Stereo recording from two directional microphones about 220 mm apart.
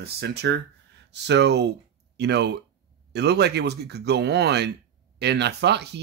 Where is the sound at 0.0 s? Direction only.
50° right (ahead or behind).